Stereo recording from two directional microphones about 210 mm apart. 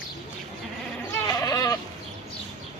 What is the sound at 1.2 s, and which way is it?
Goat, 15° left (ahead or behind).